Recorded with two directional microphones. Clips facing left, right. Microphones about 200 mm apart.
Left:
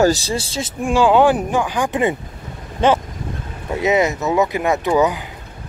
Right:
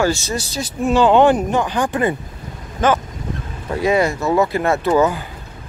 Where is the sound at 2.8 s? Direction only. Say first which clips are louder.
Left 1 dB; 25° left (ahead or behind).